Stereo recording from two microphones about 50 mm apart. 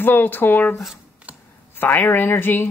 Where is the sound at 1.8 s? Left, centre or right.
Left.